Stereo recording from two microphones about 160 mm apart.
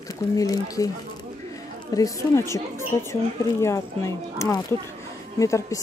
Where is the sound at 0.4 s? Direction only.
20° left (ahead or behind).